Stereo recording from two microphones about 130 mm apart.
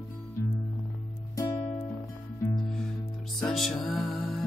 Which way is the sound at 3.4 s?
Centre (ahead or behind).